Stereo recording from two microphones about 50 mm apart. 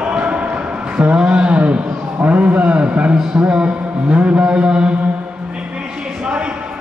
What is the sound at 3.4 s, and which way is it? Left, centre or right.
Mantra, right.